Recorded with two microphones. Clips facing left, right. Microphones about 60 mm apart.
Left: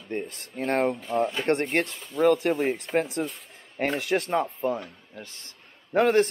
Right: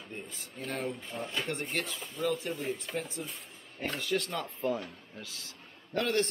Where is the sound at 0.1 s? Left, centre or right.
Left.